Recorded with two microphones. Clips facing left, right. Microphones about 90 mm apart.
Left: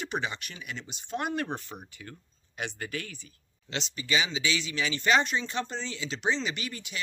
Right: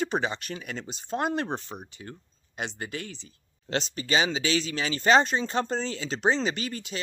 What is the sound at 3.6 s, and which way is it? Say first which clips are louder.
Speech: right 4 dB; 45° right (ahead or behind).